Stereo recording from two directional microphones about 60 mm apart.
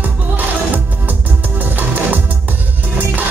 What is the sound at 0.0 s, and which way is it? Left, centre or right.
Music, right.